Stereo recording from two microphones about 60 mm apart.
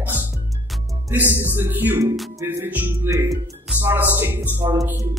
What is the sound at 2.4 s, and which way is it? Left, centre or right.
Speech, right.